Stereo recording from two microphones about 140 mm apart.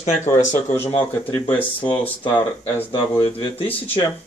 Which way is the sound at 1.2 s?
10° left (ahead or behind).